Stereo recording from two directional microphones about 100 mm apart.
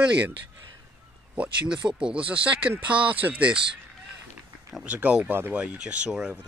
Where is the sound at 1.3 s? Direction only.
15° right (ahead or behind).